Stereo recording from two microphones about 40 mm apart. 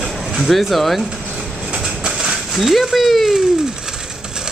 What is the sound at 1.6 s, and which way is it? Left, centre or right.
Train, right.